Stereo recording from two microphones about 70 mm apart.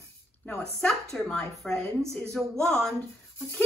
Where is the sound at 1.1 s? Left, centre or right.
Centre.